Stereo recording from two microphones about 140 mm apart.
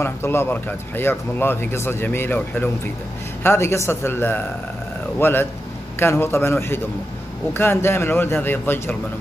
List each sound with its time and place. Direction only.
0.0 s speech: 15° left (ahead or behind)